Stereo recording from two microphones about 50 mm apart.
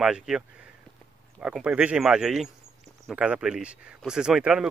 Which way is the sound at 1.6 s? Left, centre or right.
Right.